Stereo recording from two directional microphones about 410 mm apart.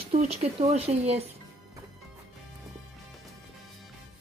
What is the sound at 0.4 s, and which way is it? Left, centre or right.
Speech, centre.